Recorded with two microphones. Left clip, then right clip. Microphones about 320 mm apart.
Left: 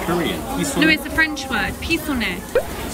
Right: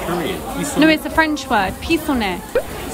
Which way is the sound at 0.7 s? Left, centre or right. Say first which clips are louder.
Right 3 dB; centre.